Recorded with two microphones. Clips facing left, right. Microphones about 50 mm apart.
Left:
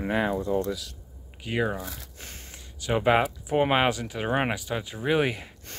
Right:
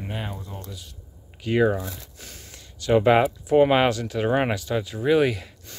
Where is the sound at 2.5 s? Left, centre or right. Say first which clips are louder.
Right 7 dB; centre.